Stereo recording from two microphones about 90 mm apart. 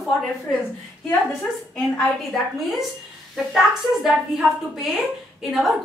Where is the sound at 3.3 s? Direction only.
5° right (ahead or behind).